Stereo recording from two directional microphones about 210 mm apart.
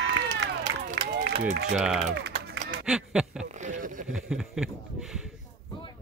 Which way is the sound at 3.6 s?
35° right (ahead or behind).